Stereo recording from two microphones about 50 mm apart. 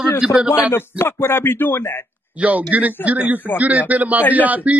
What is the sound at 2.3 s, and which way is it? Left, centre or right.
A man's voice, right.